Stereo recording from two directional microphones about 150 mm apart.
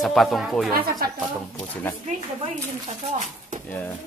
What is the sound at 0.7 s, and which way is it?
Speech, 80° right.